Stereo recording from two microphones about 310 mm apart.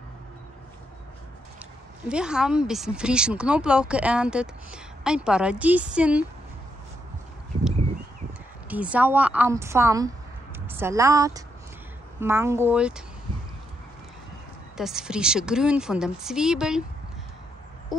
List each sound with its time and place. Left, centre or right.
2.0 s speech: centre
8.6 s a woman's voice: centre
14.8 s speech: centre